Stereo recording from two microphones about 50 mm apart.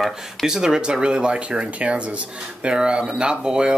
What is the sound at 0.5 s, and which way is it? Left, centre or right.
Speech, centre.